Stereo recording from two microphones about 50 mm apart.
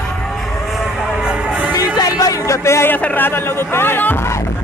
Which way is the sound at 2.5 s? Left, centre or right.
Left.